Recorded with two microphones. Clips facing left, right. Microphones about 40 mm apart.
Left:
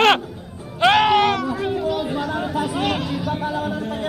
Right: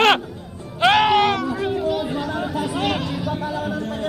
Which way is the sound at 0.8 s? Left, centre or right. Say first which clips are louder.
Even; centre.